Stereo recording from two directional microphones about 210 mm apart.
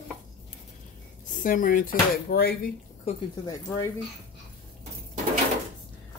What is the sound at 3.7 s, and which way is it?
Speech, 15° left (ahead or behind).